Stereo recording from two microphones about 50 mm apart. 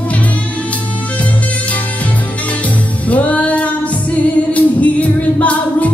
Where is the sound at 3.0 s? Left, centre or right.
Left.